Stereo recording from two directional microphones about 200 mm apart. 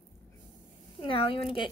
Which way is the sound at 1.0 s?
25° left (ahead or behind).